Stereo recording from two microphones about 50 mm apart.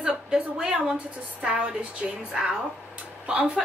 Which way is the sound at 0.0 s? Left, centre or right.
Centre.